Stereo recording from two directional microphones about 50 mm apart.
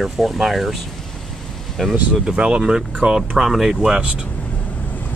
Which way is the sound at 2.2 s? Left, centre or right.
Centre.